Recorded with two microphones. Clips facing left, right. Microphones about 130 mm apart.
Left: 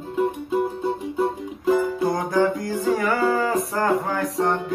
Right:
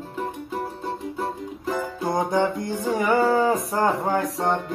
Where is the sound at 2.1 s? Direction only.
25° right (ahead or behind).